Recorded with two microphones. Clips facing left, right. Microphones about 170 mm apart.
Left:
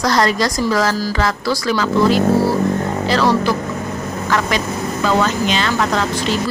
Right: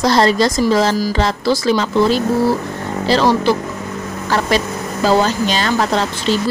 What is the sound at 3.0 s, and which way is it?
A woman's voice, 30° right (ahead or behind).